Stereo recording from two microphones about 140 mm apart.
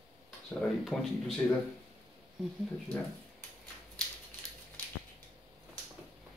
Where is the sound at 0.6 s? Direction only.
Centre (ahead or behind).